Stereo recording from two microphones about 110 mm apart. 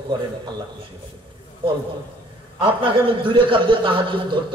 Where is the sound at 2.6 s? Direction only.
50° right (ahead or behind).